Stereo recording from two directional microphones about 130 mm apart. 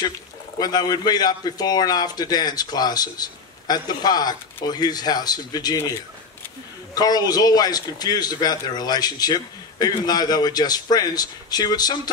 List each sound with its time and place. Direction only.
0.6 s a man's voice: 30° left (ahead or behind)
7.0 s a man's voice: 30° left (ahead or behind)